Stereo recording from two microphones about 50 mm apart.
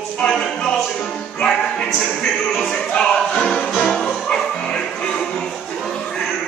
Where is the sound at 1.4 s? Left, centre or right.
Centre.